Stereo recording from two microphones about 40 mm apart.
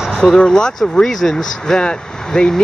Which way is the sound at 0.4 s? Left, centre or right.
Centre.